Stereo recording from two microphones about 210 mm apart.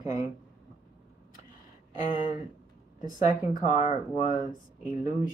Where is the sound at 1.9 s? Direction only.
35° left (ahead or behind).